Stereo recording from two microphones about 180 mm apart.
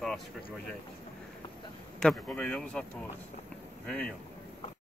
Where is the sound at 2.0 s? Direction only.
5° left (ahead or behind).